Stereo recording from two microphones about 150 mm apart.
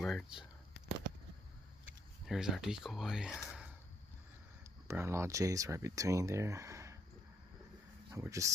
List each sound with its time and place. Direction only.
0.0 s speech: centre (ahead or behind)
2.2 s speech: centre (ahead or behind)
4.8 s speech: 15° right (ahead or behind)
8.1 s speech: 20° right (ahead or behind)